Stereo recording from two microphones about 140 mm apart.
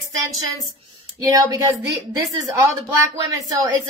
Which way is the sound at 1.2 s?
25° right (ahead or behind).